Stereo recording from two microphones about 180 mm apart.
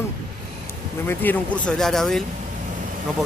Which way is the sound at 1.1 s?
10° left (ahead or behind).